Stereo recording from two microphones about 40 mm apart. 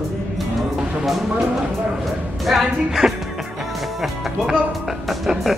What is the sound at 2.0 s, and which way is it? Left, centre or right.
Speech, centre.